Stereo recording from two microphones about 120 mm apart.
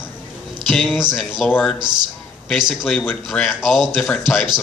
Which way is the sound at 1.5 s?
15° left (ahead or behind).